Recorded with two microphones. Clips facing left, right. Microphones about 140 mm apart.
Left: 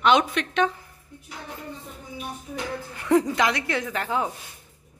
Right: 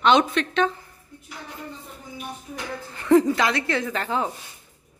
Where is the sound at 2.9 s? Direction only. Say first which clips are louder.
Right 4 dB; 10° left (ahead or behind).